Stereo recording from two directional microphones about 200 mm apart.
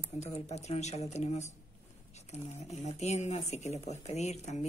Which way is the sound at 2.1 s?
35° left (ahead or behind).